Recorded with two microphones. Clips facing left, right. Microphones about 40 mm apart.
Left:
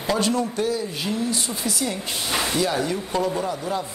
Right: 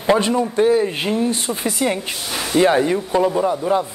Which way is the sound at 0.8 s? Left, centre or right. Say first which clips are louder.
Right 7 dB; right.